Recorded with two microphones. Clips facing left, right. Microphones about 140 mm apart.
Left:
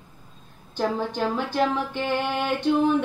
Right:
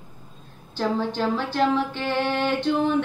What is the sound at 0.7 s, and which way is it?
Music, 10° left (ahead or behind).